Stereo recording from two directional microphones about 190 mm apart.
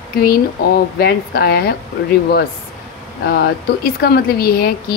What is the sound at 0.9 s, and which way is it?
Speech, 55° left (ahead or behind).